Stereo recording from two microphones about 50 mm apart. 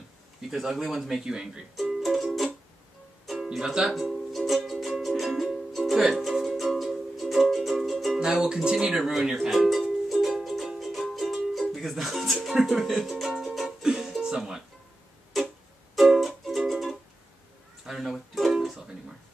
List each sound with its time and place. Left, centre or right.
0.5 s speech: centre
1.2 s speech: centre
1.8 s music: centre
3.5 s speech: centre
4.3 s music: centre
8.2 s music: centre
9.0 s speech: centre
9.7 s music: centre
11.7 s speech: centre
12.4 s music: centre
14.2 s speech: centre
15.3 s music: centre